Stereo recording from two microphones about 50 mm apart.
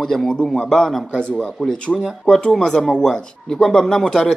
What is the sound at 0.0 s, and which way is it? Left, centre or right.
Speech, centre.